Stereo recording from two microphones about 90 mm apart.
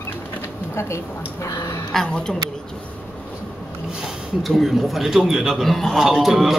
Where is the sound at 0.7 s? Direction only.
30° left (ahead or behind).